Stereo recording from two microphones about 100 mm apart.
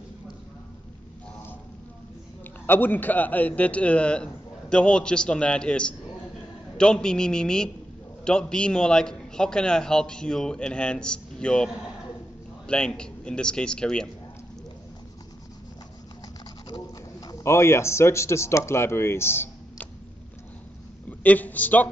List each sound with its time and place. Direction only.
2.6 s a man's voice: 20° left (ahead or behind)
16.6 s a sound: 40° left (ahead or behind)
17.4 s speech: 25° left (ahead or behind)
21.1 s a man's voice: 15° left (ahead or behind)